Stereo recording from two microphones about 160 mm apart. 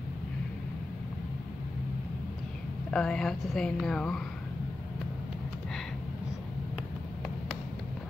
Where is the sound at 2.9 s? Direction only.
5° left (ahead or behind).